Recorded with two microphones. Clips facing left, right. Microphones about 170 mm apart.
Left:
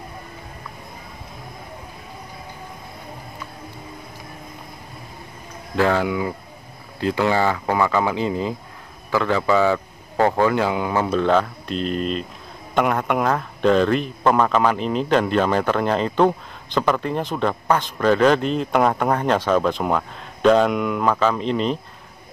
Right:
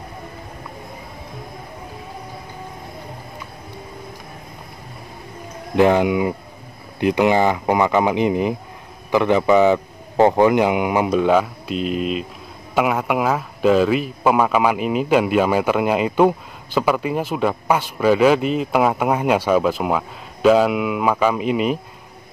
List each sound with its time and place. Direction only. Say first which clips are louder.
5.8 s speech: right 5 dB; 20° right (ahead or behind)